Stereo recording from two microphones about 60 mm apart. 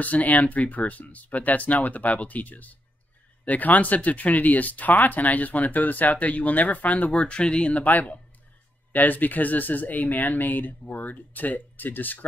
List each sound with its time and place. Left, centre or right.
0.0 s speech: left
7.8 s speech: left